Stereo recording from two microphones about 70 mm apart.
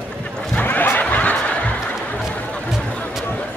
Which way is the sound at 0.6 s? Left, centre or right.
Left.